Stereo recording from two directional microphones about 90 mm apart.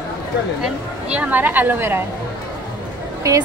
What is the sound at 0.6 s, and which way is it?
Speech, 15° right (ahead or behind).